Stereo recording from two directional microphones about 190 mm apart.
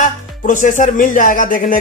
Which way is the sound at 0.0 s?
45° left (ahead or behind).